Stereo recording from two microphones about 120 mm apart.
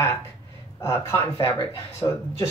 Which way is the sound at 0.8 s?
20° left (ahead or behind).